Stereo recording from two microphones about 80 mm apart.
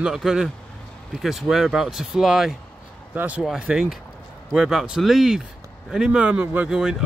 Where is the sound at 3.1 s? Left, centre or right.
Centre.